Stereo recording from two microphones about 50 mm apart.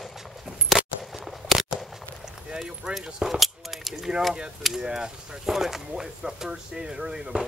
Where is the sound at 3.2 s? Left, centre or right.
Centre.